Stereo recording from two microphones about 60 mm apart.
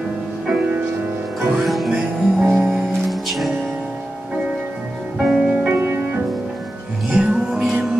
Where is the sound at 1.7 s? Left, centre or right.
Centre.